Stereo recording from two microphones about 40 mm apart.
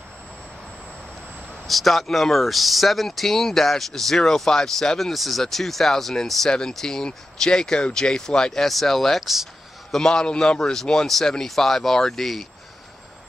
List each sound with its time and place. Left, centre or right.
1.7 s speech: centre
8.6 s speech: centre
9.3 s a sound: centre
9.9 s a man's voice: centre
10.6 s speech: centre